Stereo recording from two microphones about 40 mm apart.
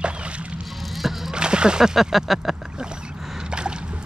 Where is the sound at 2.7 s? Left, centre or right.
Right.